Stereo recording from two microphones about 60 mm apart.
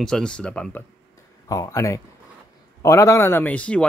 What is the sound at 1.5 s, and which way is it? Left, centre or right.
Speech, left.